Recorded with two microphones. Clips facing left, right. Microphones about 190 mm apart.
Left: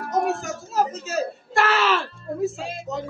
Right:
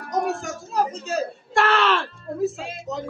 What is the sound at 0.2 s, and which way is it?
Speech, centre (ahead or behind).